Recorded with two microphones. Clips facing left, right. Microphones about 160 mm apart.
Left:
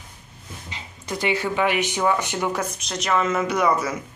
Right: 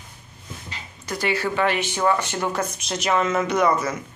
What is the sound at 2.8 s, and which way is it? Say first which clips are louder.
Speech: right 1 dB; 5° right (ahead or behind).